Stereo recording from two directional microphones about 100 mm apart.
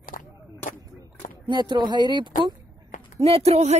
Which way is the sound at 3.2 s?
85° right.